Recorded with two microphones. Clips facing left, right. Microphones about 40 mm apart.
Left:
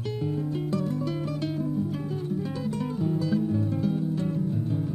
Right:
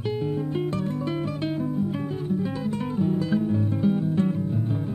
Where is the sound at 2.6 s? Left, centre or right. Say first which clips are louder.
Right 2 dB; right.